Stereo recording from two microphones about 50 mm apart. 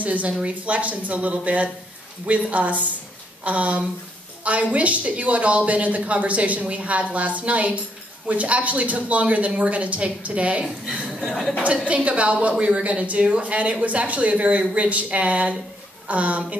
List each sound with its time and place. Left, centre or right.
0.0 s speech: right
11.6 s speech: right